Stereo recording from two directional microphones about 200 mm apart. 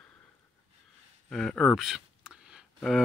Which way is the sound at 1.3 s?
5° left (ahead or behind).